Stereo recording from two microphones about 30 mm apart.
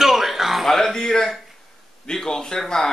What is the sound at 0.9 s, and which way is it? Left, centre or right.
Speech, centre.